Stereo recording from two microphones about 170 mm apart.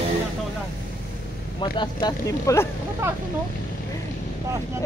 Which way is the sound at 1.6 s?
25° left (ahead or behind).